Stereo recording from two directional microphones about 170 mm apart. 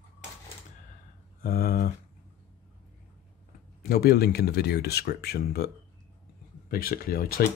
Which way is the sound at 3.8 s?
65° left (ahead or behind).